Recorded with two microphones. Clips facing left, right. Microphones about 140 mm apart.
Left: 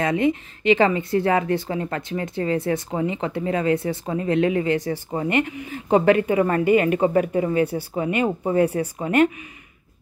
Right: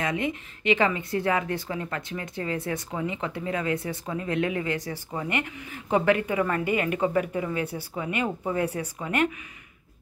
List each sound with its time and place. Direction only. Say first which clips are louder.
0.0 s speech: left 8 dB; 30° left (ahead or behind)